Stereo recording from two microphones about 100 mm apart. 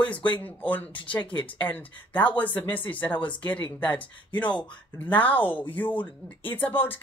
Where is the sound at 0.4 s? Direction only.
15° left (ahead or behind).